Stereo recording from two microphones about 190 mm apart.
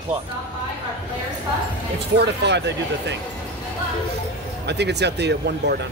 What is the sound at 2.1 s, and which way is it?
Speech, 65° right (ahead or behind).